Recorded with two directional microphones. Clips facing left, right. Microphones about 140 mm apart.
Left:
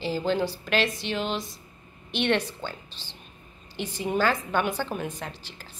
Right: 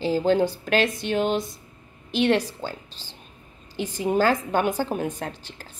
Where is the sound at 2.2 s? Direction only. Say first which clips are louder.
Right 4 dB; 40° right (ahead or behind).